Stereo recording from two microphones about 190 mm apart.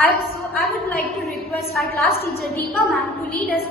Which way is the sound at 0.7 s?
55° left (ahead or behind).